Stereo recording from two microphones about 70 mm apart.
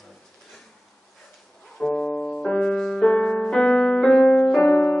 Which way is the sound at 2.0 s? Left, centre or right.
Left.